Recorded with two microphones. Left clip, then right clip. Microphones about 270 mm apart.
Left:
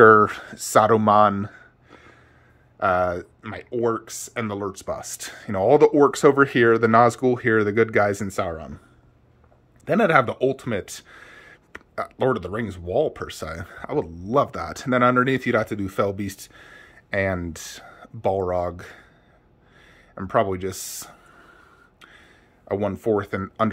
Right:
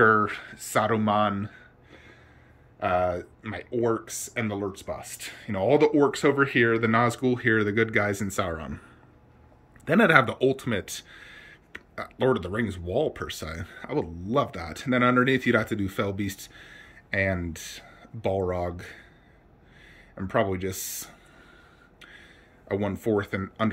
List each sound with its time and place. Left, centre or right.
0.0 s speech: left; by 8.7 s centre
9.8 s speech: centre
22.0 s a sound: centre
23.0 s speech: centre